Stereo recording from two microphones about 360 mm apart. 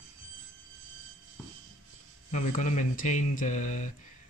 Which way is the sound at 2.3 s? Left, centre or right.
Centre.